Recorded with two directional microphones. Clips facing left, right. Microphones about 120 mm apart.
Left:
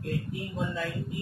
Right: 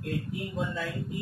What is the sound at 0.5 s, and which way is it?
Speech, centre (ahead or behind).